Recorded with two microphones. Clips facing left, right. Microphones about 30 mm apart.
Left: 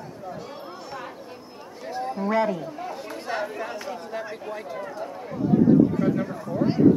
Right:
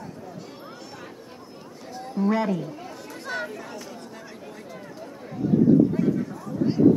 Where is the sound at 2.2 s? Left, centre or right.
Centre.